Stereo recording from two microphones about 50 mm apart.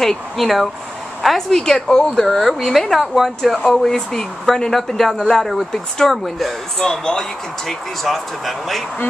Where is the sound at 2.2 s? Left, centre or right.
Centre.